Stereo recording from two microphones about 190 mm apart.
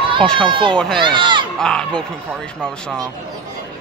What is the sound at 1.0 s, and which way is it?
Speech, 25° right (ahead or behind).